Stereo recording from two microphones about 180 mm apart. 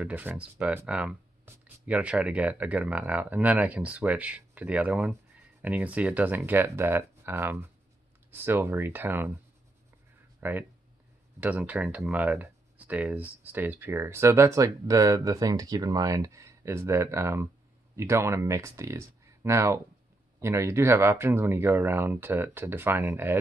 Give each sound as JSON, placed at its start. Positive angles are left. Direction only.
{"t": 0.0, "sound": "speech", "side_deg": -10}
{"t": 10.4, "sound": "speech", "side_deg": -10}